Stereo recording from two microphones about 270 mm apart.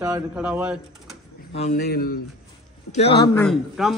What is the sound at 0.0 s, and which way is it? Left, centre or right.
A man's voice, centre.